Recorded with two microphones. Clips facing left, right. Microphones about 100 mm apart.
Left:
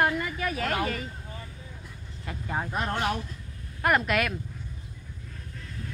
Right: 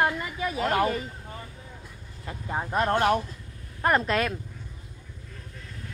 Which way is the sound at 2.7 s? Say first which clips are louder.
Right 8 dB; 45° right (ahead or behind).